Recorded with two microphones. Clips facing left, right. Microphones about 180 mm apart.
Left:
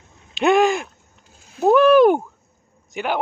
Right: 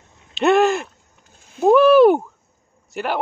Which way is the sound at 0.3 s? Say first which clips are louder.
Right 1 dB; centre (ahead or behind).